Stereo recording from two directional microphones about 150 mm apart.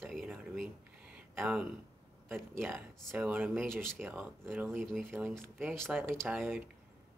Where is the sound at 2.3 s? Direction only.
15° right (ahead or behind).